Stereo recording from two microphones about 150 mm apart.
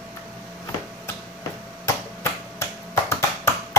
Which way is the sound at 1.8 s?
15° left (ahead or behind).